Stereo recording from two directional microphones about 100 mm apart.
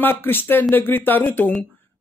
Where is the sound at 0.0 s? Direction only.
20° left (ahead or behind).